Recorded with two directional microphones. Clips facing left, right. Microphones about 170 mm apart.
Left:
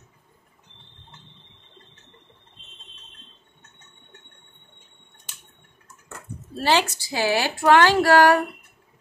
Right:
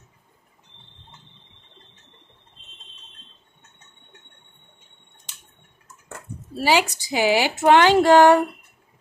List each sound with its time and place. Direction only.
6.5 s a woman's voice: 10° right (ahead or behind)